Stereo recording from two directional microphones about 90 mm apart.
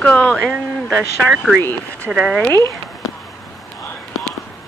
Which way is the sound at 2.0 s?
10° right (ahead or behind).